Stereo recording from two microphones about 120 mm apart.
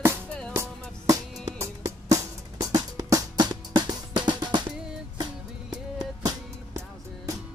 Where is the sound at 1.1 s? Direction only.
30° right (ahead or behind).